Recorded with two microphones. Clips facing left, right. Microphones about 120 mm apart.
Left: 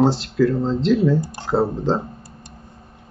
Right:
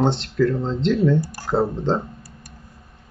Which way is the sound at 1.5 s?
Centre (ahead or behind).